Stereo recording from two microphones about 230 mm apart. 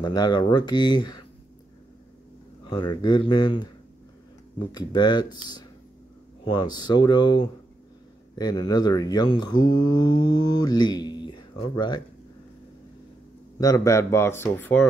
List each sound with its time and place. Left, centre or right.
0.0 s speech: centre
2.7 s speech: centre
13.6 s speech: centre